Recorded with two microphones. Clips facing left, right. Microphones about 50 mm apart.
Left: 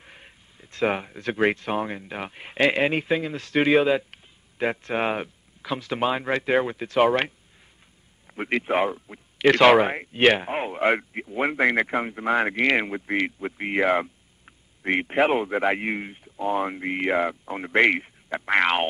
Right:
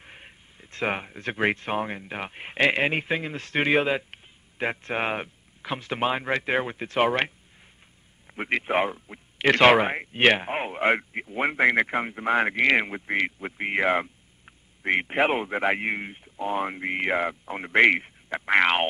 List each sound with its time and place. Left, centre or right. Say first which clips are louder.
0.0 s speech: right 1 dB; right
8.4 s a man's voice: left 1 dB; right
14.0 s a sound: left 3 dB; centre
14.9 s a man's voice: left 2 dB; right
18.4 s speech: right 1 dB; centre